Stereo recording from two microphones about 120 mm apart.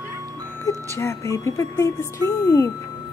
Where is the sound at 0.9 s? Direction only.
25° left (ahead or behind).